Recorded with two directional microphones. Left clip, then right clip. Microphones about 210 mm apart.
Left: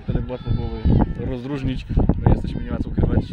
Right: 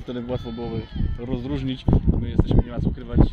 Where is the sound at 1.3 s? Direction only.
10° left (ahead or behind).